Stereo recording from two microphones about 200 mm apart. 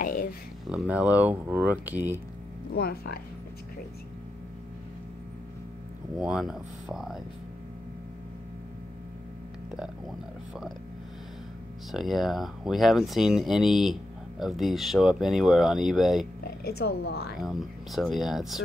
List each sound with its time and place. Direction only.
0.0 s a sound: 45° left (ahead or behind)
0.7 s speech: 5° right (ahead or behind)
2.7 s speech: 50° left (ahead or behind)
6.1 s speech: 5° right (ahead or behind)
11.9 s speech: centre (ahead or behind)
16.4 s speech: 50° left (ahead or behind)
17.4 s speech: centre (ahead or behind)